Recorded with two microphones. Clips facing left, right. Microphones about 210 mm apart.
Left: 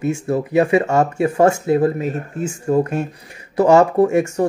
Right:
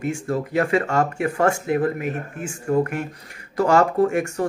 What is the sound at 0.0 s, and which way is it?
Speech, 20° left (ahead or behind).